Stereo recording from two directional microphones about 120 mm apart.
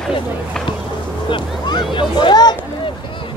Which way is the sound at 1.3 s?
40° left (ahead or behind).